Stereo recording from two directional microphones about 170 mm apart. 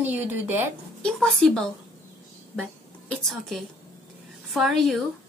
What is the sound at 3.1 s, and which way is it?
A woman's voice, centre (ahead or behind).